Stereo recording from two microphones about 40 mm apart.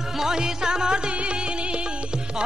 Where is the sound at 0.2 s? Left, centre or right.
Centre.